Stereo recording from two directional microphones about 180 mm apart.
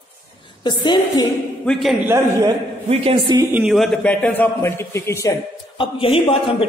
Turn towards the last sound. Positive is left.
turn(degrees=30)  # may be behind; listen again after turning